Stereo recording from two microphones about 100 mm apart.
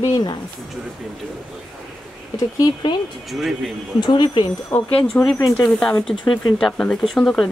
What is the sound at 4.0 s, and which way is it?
Speech, 50° left (ahead or behind).